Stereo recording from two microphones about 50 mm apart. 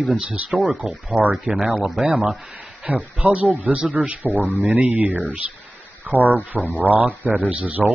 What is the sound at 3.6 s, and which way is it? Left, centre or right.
Speech, right.